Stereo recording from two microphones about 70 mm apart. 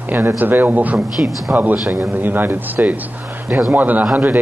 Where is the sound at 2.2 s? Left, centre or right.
Right.